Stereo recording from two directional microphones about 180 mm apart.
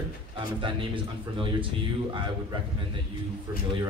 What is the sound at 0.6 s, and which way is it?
Speech, 30° right (ahead or behind).